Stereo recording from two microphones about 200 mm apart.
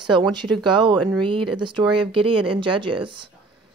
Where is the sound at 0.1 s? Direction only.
20° right (ahead or behind).